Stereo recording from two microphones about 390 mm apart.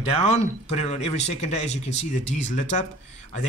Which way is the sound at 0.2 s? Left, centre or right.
Centre.